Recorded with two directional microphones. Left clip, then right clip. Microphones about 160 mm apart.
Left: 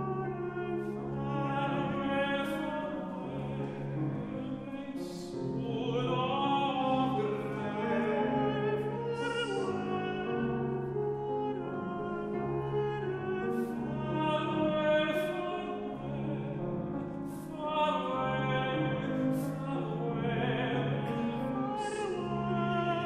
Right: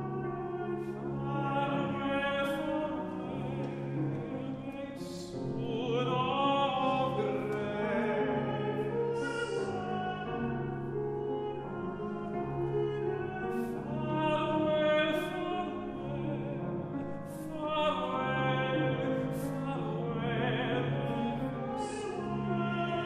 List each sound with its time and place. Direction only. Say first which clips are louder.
14.2 s music: right 1 dB; 5° right (ahead or behind)
17.7 s music: left 1 dB; 5° right (ahead or behind)